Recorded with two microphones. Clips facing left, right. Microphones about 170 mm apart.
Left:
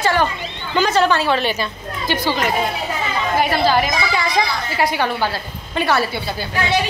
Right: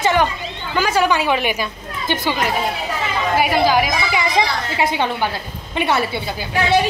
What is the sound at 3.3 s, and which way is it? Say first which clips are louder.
A woman's voice: right 1 dB; 10° right (ahead or behind).